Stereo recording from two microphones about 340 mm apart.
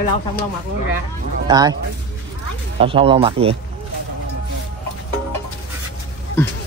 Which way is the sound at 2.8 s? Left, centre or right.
Centre.